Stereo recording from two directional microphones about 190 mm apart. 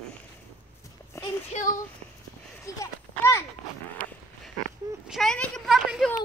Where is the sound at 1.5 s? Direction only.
40° left (ahead or behind).